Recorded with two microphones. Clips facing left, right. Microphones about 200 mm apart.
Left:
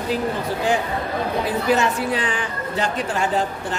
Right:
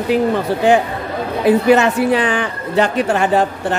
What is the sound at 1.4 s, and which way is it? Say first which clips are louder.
Speech: right 10 dB; 65° right (ahead or behind).